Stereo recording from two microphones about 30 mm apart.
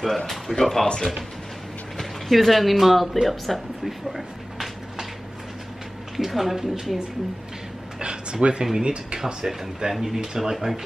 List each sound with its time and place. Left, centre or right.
0.3 s speech: centre
2.0 s speech: centre
6.1 s speech: centre
8.0 s speech: right
9.9 s speech: centre